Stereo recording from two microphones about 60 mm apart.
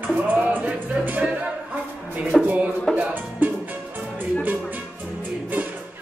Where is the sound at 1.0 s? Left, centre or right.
Right.